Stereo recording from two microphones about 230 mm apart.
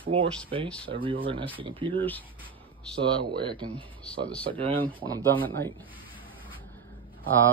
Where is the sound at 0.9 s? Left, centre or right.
Right.